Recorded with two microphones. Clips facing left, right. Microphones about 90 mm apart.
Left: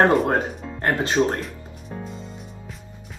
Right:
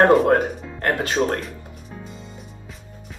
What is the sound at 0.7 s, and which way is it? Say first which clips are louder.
Speech: even; 25° left (ahead or behind).